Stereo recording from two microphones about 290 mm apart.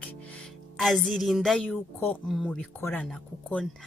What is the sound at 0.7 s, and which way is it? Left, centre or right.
A woman's voice, centre.